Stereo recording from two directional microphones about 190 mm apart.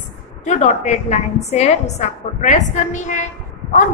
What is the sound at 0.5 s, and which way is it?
A woman's voice, 35° left (ahead or behind).